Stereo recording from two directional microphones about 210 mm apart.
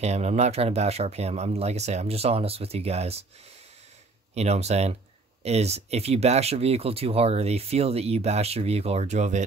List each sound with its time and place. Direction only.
0.0 s speech: 30° right (ahead or behind)
4.4 s speech: 30° right (ahead or behind)